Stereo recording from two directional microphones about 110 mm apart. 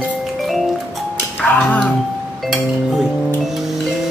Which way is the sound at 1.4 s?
15° left (ahead or behind).